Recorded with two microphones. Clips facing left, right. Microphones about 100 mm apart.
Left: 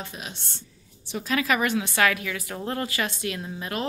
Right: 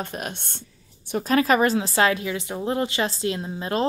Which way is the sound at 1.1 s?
40° right (ahead or behind).